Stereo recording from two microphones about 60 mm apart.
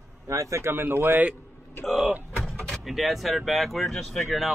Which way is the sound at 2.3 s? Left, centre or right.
Centre.